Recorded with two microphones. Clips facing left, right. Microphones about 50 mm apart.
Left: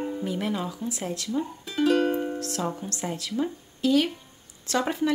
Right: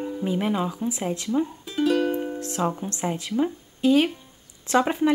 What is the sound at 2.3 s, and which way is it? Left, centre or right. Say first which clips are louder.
Speech: right 4 dB; right.